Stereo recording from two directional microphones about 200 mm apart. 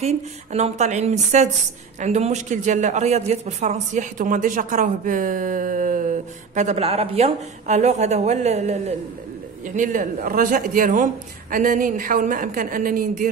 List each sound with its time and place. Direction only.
0.0 s a man's voice: 35° right (ahead or behind)